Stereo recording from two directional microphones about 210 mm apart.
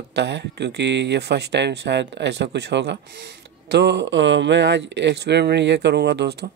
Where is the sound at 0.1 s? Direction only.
55° right (ahead or behind).